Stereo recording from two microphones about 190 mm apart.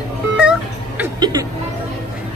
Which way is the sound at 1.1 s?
20° right (ahead or behind).